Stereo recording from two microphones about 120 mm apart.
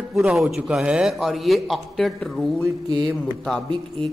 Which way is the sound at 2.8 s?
35° right (ahead or behind).